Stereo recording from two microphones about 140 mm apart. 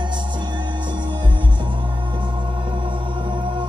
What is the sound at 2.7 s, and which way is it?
Music, 35° right (ahead or behind).